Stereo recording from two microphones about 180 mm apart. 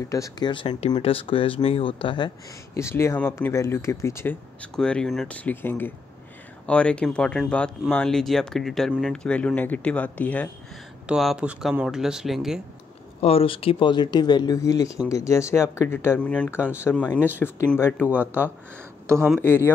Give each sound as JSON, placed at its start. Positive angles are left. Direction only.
{"t": 0.1, "sound": "speech", "side_deg": 20}
{"t": 11.1, "sound": "speech", "side_deg": -5}
{"t": 13.2, "sound": "speech", "side_deg": 30}
{"t": 19.0, "sound": "speech", "side_deg": -15}
{"t": 19.4, "sound": "speech", "side_deg": 10}